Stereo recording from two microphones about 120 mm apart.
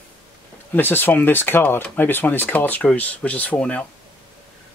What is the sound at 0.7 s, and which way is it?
Speech, 15° left (ahead or behind).